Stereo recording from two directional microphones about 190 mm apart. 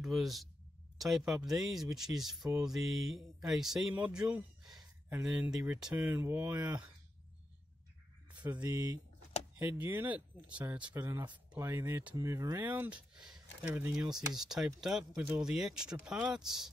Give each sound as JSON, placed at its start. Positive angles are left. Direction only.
{"t": 0.0, "sound": "speech", "side_deg": 0}
{"t": 8.6, "sound": "speech", "side_deg": -15}